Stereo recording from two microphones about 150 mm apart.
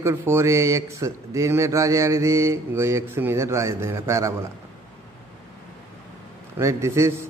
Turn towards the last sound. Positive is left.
turn(degrees=-20)  # may be behind; listen again after turning